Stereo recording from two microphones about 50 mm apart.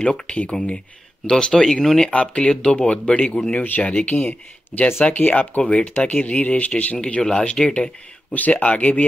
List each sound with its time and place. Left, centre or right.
0.0 s speech: left
1.4 s speech: centre
2.0 s speech: left
3.6 s speech: left
5.6 s speech: left
8.3 s speech: left